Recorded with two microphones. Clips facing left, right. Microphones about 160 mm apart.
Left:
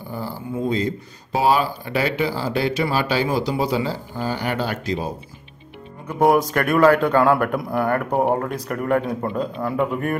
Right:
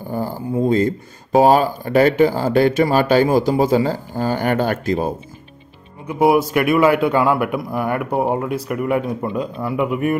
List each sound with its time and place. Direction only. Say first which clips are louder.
0.1 s speech: right 6 dB; 45° right (ahead or behind)
6.0 s a man's voice: right 2 dB; 10° right (ahead or behind)